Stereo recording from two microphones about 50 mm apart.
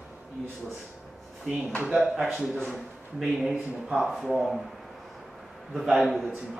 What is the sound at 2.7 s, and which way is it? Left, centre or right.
A man's voice, centre.